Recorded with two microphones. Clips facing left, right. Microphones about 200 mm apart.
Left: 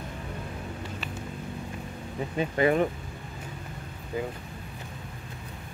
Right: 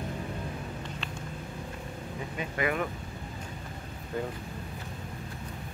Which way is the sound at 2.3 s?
30° left (ahead or behind).